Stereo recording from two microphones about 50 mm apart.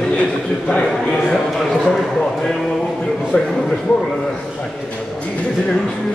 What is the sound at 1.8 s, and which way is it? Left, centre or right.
Speech, centre.